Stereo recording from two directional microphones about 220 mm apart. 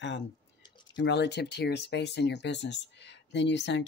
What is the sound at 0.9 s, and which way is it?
Speech, 50° left (ahead or behind).